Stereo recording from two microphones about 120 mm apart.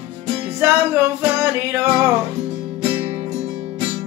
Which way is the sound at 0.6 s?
20° right (ahead or behind).